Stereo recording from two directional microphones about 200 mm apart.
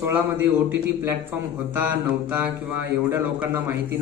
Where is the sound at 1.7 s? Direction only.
10° right (ahead or behind).